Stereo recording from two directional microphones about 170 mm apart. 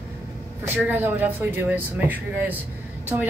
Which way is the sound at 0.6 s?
10° right (ahead or behind).